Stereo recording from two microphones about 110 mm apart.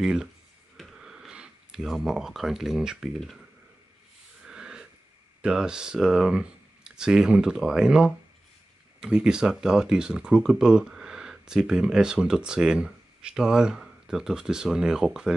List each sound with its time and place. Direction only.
0.0 s speech: 5° right (ahead or behind)
4.5 s a sound: 5° right (ahead or behind)
5.4 s speech: 5° right (ahead or behind)